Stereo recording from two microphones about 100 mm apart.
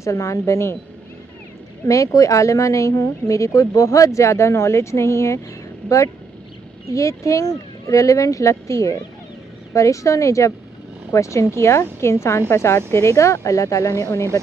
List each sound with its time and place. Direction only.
0.0 s speech: 30° left (ahead or behind)
1.9 s speech: 35° left (ahead or behind)
6.9 s a woman's voice: 30° left (ahead or behind)